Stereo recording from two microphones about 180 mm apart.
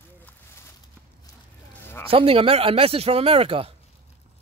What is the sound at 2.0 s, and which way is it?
Speech, 30° right (ahead or behind).